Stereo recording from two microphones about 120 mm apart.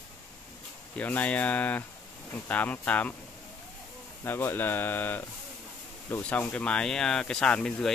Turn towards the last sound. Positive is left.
turn(degrees=5)  # may be behind; listen again after turning